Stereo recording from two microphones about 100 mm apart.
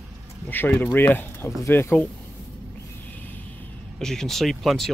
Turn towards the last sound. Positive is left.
turn(degrees=0)  # may be behind; listen again after turning